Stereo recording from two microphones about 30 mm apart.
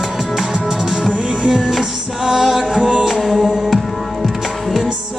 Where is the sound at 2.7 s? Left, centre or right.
Right.